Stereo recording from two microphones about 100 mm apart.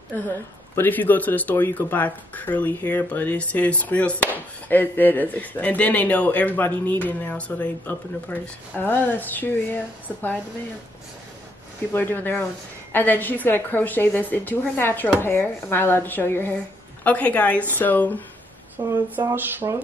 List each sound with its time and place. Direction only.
0.7 s speech: 20° left (ahead or behind)
11.9 s a woman's voice: 20° left (ahead or behind)
18.8 s a sound: 40° right (ahead or behind)
19.3 s speech: 25° right (ahead or behind)